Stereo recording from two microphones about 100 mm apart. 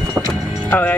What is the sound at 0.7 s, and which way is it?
Speech, 15° left (ahead or behind).